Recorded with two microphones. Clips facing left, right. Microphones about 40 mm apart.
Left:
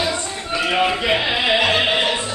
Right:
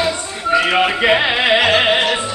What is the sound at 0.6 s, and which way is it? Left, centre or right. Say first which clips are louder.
Music: right 4 dB; right.